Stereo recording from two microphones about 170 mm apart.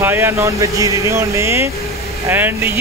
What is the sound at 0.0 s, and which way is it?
Speech, 15° right (ahead or behind).